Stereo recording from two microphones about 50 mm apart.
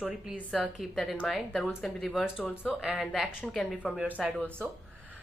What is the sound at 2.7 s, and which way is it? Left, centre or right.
Speech, right.